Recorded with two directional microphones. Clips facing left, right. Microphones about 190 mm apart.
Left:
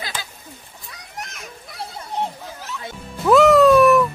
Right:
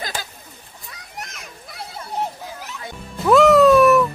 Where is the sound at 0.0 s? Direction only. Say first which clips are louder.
Right 2 dB; 45° right (ahead or behind).